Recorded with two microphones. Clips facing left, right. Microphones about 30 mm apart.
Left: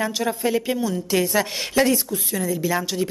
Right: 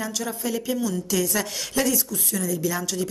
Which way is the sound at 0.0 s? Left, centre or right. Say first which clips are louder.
Left 6 dB; left.